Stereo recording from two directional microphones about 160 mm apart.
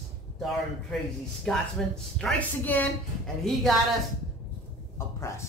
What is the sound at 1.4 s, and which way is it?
Speech, 5° left (ahead or behind).